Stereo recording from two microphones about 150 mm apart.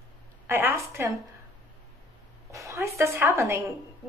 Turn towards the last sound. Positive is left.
turn(degrees=-20)  # may be behind; listen again after turning